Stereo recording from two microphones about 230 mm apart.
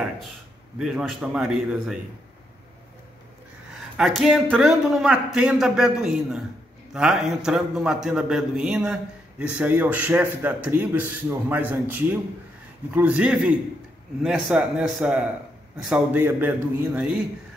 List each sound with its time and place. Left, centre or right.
0.7 s a man's voice: centre
3.9 s a man's voice: centre